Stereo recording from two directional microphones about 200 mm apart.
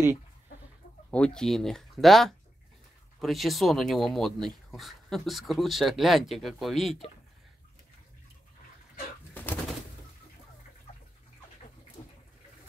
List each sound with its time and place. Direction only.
1.1 s speech: 5° left (ahead or behind)
9.3 s bird: 10° left (ahead or behind)